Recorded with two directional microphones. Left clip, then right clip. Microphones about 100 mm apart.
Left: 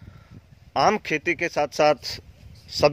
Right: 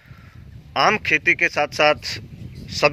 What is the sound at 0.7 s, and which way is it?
A man's voice, 35° left (ahead or behind).